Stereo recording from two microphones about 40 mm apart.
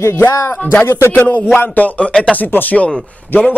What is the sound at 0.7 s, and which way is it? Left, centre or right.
Speech, left.